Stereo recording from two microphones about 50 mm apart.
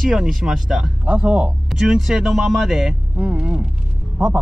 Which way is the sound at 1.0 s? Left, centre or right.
Right.